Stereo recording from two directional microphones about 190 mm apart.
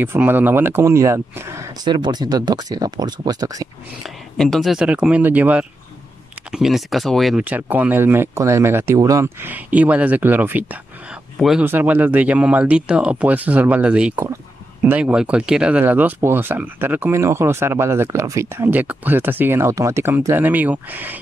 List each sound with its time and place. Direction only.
0.0 s speech: 10° right (ahead or behind)
4.0 s speech: centre (ahead or behind)